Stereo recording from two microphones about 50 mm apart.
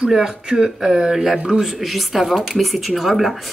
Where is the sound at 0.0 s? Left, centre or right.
Centre.